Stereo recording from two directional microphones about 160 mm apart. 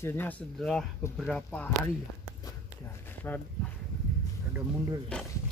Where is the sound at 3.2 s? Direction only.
10° left (ahead or behind).